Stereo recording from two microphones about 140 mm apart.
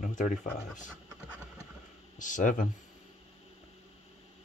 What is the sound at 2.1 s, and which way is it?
Speech, 65° left (ahead or behind).